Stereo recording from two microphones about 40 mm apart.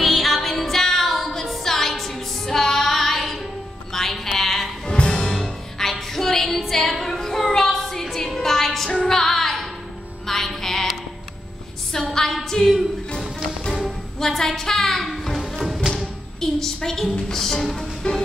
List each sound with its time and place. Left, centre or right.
0.0 s music: centre
4.8 s music: left
5.3 s music: centre
11.9 s a sound: centre
14.2 s a woman's voice: centre
15.0 s music: centre
16.3 s a woman's voice: centre
18.0 s music: left